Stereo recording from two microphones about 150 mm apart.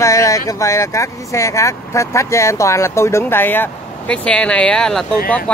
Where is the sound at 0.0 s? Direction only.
20° left (ahead or behind).